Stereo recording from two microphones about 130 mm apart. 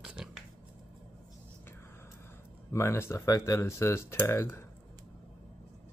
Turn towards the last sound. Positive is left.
turn(degrees=20)  # may be behind; listen again after turning